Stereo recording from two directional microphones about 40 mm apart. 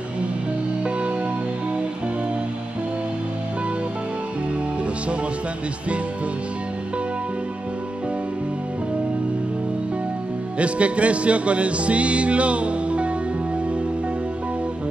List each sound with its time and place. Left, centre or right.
10.6 s music: right